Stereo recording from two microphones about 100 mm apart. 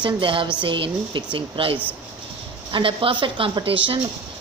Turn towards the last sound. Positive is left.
turn(degrees=-60)  # may be behind; listen again after turning